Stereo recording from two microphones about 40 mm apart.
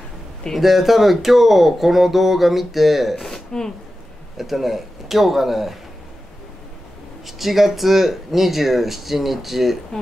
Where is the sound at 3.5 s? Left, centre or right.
Centre.